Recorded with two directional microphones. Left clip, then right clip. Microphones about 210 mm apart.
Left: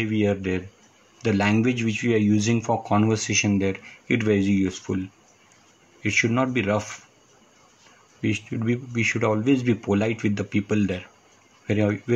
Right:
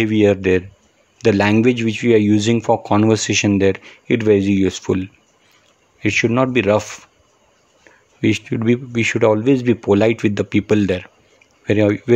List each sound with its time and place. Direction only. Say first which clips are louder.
0.0 s speech: right 10 dB; 50° right (ahead or behind)
6.0 s speech: right 6 dB; 45° right (ahead or behind)
8.2 s speech: right 9 dB; 50° right (ahead or behind)